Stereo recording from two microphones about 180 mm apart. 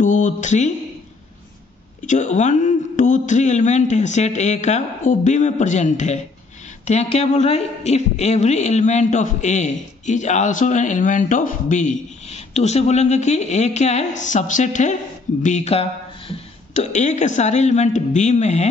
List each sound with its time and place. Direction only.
0.0 s speech: 45° left (ahead or behind)
2.0 s a man's voice: 40° left (ahead or behind)